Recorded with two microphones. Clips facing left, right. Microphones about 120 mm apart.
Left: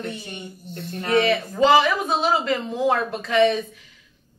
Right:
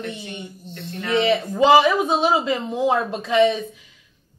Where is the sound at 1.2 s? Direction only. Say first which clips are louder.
Right 1 dB; 20° right (ahead or behind).